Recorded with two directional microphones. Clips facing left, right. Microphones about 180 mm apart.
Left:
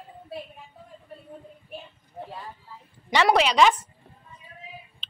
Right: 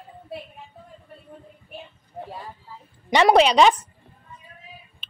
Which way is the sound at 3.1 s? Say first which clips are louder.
Right 5 dB; 20° right (ahead or behind).